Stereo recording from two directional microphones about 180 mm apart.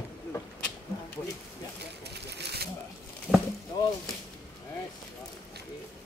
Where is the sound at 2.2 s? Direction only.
65° right (ahead or behind).